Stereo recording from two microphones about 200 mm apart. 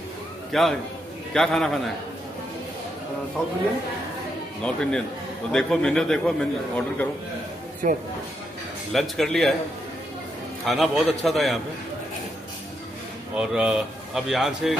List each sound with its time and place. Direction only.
0.5 s a man's voice: centre (ahead or behind)
3.4 s a man's voice: 5° left (ahead or behind)
4.6 s a man's voice: 5° left (ahead or behind)
7.8 s speech: 40° right (ahead or behind)
8.9 s a man's voice: centre (ahead or behind)
10.6 s a man's voice: centre (ahead or behind)
13.4 s a man's voice: 5° right (ahead or behind)